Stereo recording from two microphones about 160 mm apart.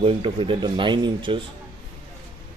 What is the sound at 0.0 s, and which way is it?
Speech, 35° right (ahead or behind).